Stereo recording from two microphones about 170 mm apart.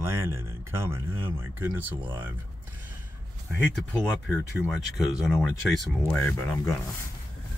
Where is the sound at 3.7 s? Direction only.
5° left (ahead or behind).